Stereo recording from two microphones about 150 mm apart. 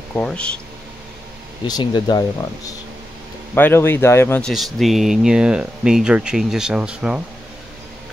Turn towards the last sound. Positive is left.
turn(degrees=-5)  # may be behind; listen again after turning